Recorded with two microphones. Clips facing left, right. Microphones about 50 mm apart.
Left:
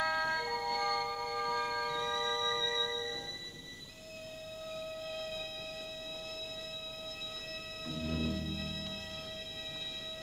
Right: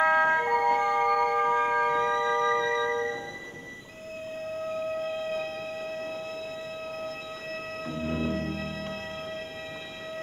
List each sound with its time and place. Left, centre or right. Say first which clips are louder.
0.0 s emergency vehicle: right 11 dB; right
1.0 s music: right 12 dB; right
4.5 s siren: right 12 dB; right
7.8 s music: right 6 dB; right